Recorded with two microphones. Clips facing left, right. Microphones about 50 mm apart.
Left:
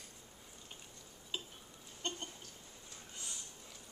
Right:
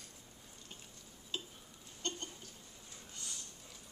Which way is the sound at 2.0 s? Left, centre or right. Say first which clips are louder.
Even; centre.